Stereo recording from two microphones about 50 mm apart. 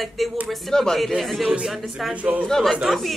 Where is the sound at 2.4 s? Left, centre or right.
Centre.